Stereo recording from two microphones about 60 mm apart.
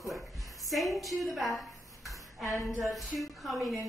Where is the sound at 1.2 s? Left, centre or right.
Centre.